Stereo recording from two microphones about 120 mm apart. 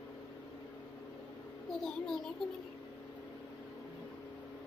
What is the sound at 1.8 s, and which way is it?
Speech, 5° left (ahead or behind).